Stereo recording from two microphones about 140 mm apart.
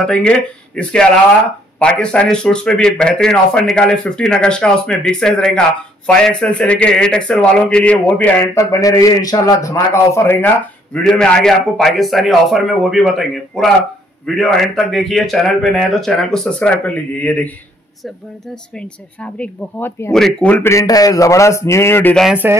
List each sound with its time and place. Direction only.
0.0 s a man's voice: 5° left (ahead or behind)
8.4 s a man's voice: 25° left (ahead or behind); by 20.5 s 5° left (ahead or behind)
20.6 s speech: 25° left (ahead or behind)
22.1 s a man's voice: centre (ahead or behind)